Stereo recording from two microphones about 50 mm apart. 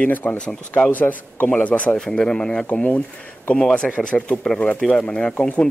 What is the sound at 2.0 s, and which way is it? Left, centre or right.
Speech, centre.